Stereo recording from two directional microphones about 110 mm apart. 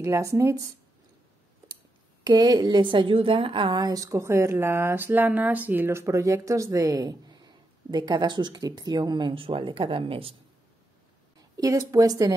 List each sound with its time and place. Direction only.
0.0 s speech: 25° right (ahead or behind)
2.2 s a woman's voice: 40° right (ahead or behind); by 3.8 s 55° right (ahead or behind)
3.8 s speech: 35° right (ahead or behind)
9.3 s a woman's voice: 55° right (ahead or behind)
11.5 s a woman's voice: 35° right (ahead or behind)